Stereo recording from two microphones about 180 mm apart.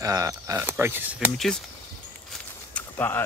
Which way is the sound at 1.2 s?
Centre (ahead or behind).